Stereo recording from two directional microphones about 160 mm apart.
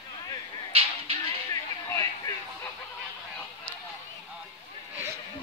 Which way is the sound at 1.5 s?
20° left (ahead or behind).